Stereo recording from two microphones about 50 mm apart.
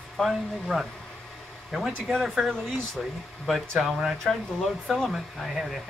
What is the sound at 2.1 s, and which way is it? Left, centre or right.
Speech, centre.